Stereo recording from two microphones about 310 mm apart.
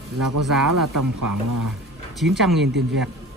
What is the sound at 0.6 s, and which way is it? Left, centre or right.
Speech, right.